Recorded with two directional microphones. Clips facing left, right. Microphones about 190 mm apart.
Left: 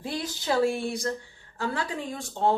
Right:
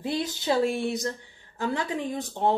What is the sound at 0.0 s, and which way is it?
Speech, 20° right (ahead or behind).